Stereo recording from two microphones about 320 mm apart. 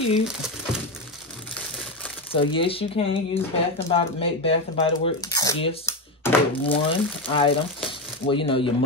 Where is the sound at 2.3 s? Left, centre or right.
Centre.